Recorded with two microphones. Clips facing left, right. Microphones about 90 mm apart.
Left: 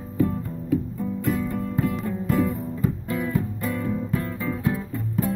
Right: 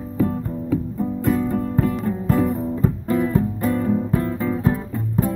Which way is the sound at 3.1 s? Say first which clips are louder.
Right 6 dB; 40° right (ahead or behind).